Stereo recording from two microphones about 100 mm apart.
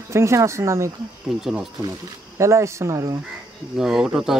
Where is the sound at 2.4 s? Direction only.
30° right (ahead or behind).